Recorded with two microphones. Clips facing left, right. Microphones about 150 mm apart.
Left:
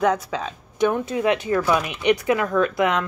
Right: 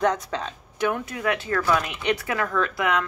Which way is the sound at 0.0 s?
5° left (ahead or behind).